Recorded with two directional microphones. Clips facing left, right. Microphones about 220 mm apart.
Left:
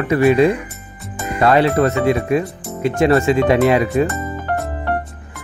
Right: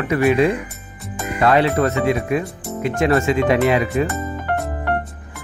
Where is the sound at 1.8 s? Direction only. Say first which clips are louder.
Left 3 dB; 35° left (ahead or behind).